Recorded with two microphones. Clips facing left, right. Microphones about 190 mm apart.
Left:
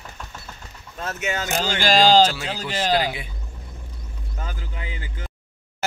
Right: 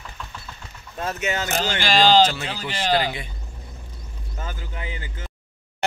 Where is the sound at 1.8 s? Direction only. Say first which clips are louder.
Left 1 dB; 45° left (ahead or behind).